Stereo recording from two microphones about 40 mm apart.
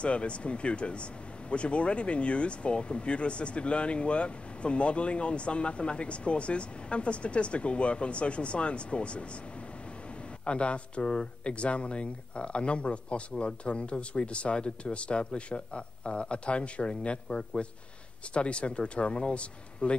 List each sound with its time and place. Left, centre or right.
0.0 s speech: left
10.4 s speech: left